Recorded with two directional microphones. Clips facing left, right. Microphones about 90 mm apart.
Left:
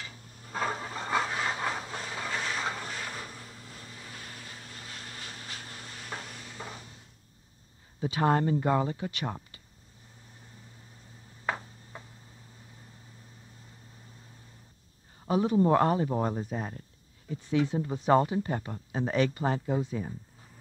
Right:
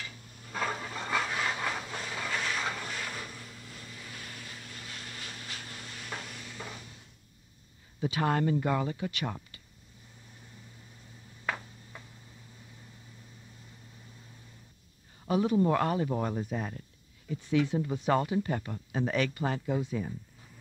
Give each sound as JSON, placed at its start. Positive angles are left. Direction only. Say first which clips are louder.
{"t": 0.0, "sound": "a sound", "louder": "even", "side_deg": 35}
{"t": 8.0, "sound": "speech", "louder": "left 2 dB", "side_deg": 30}
{"t": 10.3, "sound": "vehicle", "louder": "even", "side_deg": 35}
{"t": 11.4, "sound": "tick-tock", "louder": "left 2 dB", "side_deg": 30}
{"t": 15.1, "sound": "speech", "louder": "left 1 dB", "side_deg": 30}